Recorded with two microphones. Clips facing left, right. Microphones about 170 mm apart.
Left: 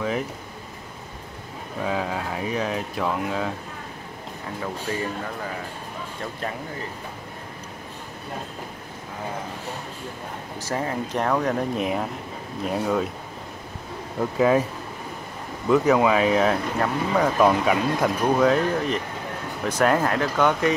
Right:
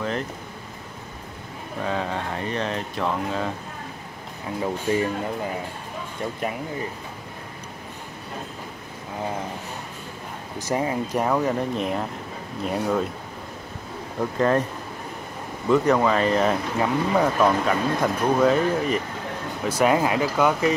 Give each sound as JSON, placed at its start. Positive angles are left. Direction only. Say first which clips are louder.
{"t": 1.8, "sound": "speech", "louder": "even", "side_deg": 5}
{"t": 4.6, "sound": "speech", "louder": "right 6 dB", "side_deg": -20}
{"t": 10.6, "sound": "speech", "louder": "right 3 dB", "side_deg": -15}
{"t": 14.4, "sound": "speech", "louder": "left 2 dB", "side_deg": 5}
{"t": 15.7, "sound": "speech", "louder": "left 1 dB", "side_deg": 0}
{"t": 17.4, "sound": "speech", "louder": "left 1 dB", "side_deg": 10}
{"t": 18.0, "sound": "speech", "louder": "even", "side_deg": 0}